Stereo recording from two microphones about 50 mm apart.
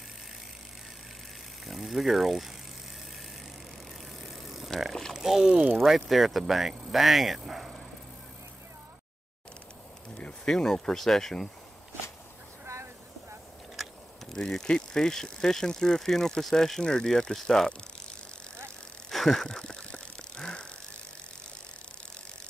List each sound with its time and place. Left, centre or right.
1.7 s speech: centre
4.2 s vehicle: centre
4.7 s speech: centre
5.5 s speech: right
5.8 s speech: centre
10.0 s speech: centre
14.3 s speech: centre
19.0 s vehicle: centre